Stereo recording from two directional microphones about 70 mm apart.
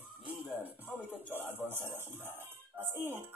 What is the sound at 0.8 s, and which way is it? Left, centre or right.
Music, left.